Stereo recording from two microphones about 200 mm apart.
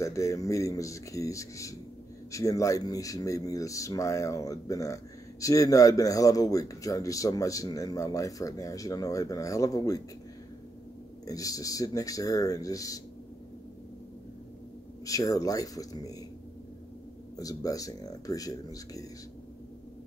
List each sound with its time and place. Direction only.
0.0 s speech: 15° left (ahead or behind)
11.2 s speech: 15° left (ahead or behind)
15.0 s speech: 15° left (ahead or behind)
17.4 s speech: 15° left (ahead or behind)